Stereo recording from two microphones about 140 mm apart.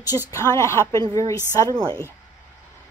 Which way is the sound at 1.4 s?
15° right (ahead or behind).